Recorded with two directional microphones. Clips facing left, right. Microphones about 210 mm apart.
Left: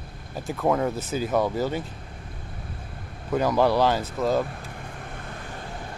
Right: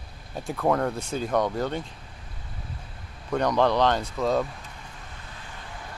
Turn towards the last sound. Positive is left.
turn(degrees=55)  # may be behind; listen again after turning